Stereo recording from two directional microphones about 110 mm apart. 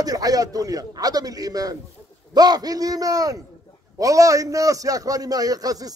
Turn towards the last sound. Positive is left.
turn(degrees=-35)  # may be behind; listen again after turning